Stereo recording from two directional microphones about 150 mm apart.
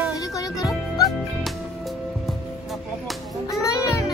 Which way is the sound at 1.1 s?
Centre (ahead or behind).